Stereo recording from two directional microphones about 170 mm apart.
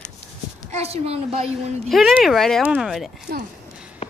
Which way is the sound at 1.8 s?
Centre (ahead or behind).